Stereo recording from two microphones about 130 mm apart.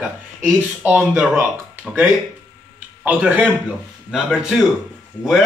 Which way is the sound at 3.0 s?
10° right (ahead or behind).